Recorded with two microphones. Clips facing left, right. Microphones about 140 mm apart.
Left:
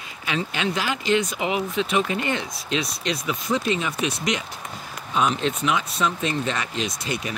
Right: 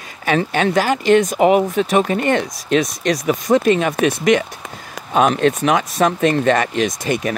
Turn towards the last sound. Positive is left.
turn(degrees=-50)  # may be behind; listen again after turning